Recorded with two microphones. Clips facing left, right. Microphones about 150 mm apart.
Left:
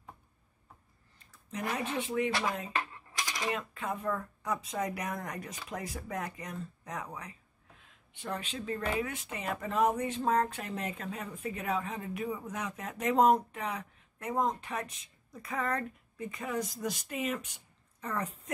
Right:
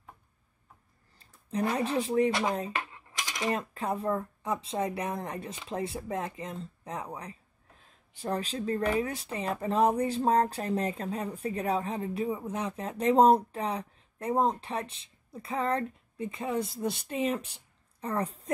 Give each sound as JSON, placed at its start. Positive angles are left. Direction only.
{"t": 1.1, "sound": "speech", "side_deg": -30}
{"t": 2.7, "sound": "coin", "side_deg": -20}
{"t": 3.5, "sound": "speech", "side_deg": -35}